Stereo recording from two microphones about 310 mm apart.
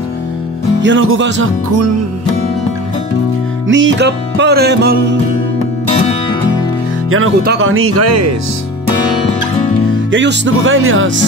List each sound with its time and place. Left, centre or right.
0.8 s music: right
3.6 s music: right
7.1 s speech: right
10.1 s music: right